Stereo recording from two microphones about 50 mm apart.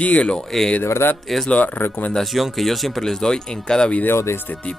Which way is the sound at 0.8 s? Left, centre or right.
Left.